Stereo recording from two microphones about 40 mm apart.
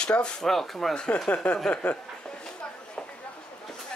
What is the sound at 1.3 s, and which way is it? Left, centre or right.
Speech, left.